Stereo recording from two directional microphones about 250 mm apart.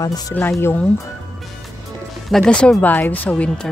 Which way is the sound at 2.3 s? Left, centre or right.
Centre.